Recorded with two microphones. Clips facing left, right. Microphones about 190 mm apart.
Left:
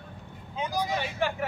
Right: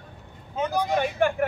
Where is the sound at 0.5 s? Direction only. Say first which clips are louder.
Right 5 dB; 55° right (ahead or behind).